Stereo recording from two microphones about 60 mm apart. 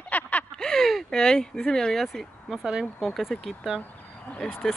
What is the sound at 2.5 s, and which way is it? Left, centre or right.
Speech, centre.